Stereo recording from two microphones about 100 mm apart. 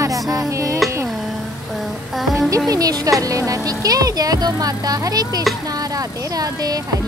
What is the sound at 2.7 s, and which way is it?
Speech, 40° right (ahead or behind).